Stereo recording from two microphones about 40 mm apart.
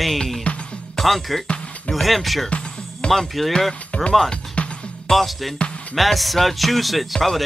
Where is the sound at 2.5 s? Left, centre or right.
Left.